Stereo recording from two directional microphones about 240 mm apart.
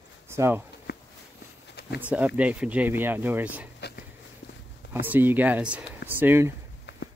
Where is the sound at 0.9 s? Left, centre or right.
Left.